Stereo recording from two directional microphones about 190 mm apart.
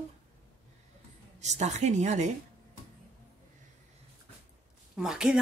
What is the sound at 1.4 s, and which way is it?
Speech, 35° right (ahead or behind).